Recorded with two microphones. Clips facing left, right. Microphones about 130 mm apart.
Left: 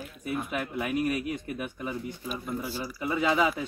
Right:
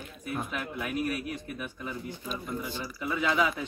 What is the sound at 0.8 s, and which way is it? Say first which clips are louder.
Speech: left 3 dB; 15° left (ahead or behind).